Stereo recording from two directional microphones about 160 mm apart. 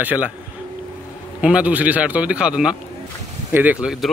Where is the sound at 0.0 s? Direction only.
10° right (ahead or behind).